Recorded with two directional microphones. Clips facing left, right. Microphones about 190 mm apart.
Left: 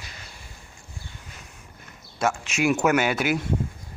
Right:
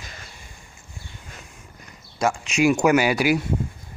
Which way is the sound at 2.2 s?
Centre (ahead or behind).